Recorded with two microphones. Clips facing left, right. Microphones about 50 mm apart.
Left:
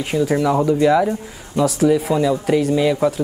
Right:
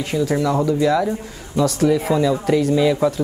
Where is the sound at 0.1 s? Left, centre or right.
Centre.